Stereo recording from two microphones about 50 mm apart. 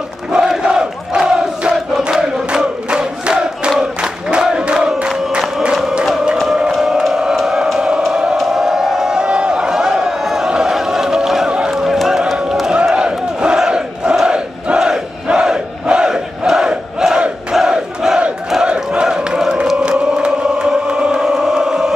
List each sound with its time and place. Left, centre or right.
0.3 s crowd: centre
2.0 s a sound: centre
4.0 s crowd: centre
6.3 s music: centre
6.7 s a sound: centre
8.0 s music: centre
8.4 s a sound: centre
11.7 s run: centre
12.4 s battle cry: centre
13.6 s crowd: centre
18.6 s crowd: right
19.0 s a sound: centre
19.8 s music: centre